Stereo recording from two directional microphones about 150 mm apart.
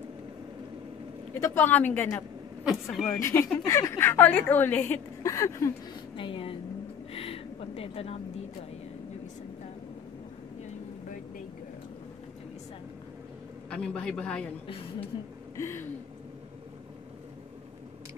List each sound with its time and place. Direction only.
1.3 s a woman's voice: 15° left (ahead or behind)
2.6 s a woman's voice: centre (ahead or behind)
3.1 s a woman's voice: 20° left (ahead or behind)
6.1 s a woman's voice: 35° left (ahead or behind)
7.1 s a sound: 40° left (ahead or behind)
13.7 s a woman's voice: 5° left (ahead or behind)
15.5 s a woman's voice: 15° left (ahead or behind)